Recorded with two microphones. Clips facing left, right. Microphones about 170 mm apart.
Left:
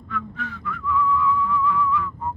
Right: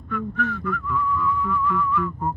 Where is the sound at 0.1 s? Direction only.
55° right (ahead or behind).